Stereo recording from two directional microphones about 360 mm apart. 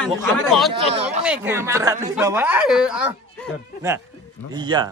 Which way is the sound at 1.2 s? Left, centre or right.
Centre.